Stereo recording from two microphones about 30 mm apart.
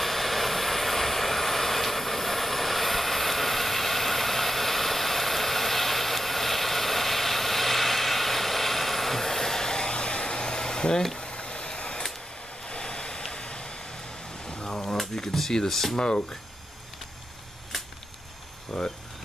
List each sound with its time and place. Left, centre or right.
0.0 s vehicle: centre; by 11.1 s left
11.1 s a sound: left
12.6 s vehicle: left
14.4 s a sound: left
15.5 s speech: centre
16.0 s speech: left
18.7 s speech: centre